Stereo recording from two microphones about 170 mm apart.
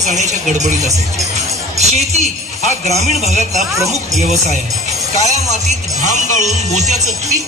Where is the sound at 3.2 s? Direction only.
40° right (ahead or behind).